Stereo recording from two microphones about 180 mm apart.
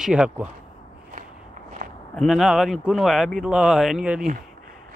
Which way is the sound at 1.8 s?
50° right (ahead or behind).